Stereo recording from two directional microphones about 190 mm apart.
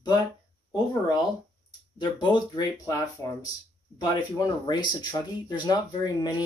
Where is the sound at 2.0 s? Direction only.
25° left (ahead or behind).